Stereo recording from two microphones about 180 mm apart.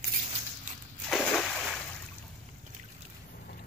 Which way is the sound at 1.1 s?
5° left (ahead or behind).